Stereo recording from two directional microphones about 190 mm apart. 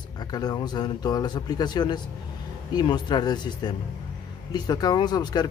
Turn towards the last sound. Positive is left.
turn(degrees=20)  # may be behind; listen again after turning